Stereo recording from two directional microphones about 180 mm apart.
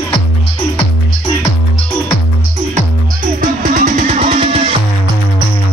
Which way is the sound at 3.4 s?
45° right (ahead or behind).